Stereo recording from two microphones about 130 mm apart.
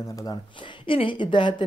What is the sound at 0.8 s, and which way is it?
Speech, 40° left (ahead or behind).